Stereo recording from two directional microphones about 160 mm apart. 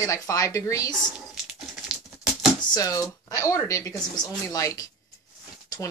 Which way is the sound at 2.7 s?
20° left (ahead or behind).